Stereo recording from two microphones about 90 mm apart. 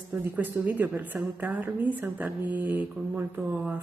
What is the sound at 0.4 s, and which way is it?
A woman's voice, 20° right (ahead or behind).